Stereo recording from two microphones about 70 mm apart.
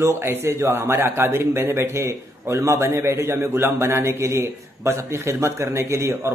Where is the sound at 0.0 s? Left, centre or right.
Right.